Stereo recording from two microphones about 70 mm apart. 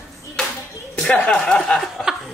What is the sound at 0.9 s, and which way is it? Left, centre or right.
Speech, centre.